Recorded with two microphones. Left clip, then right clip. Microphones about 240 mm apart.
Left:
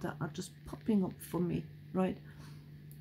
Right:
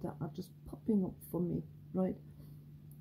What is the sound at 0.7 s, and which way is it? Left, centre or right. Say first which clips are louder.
Speech: left 1 dB; centre.